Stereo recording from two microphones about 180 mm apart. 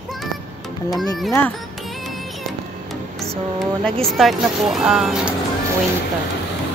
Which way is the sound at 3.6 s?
Centre (ahead or behind).